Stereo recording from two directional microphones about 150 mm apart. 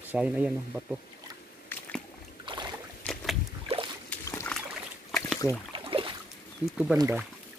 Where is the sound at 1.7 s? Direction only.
5° left (ahead or behind).